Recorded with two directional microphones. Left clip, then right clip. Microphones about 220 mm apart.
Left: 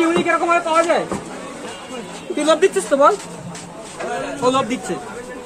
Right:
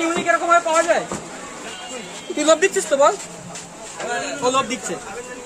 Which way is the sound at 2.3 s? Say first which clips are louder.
Left 1 dB; 25° right (ahead or behind).